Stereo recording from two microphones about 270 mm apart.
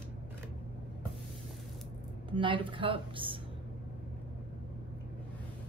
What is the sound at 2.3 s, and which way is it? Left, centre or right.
A woman's voice, centre.